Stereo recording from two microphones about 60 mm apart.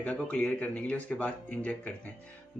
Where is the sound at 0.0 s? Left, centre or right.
Left.